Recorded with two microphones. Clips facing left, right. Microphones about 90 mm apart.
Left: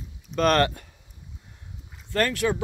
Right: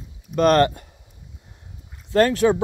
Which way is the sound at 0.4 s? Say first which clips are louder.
Right 5 dB; 5° right (ahead or behind).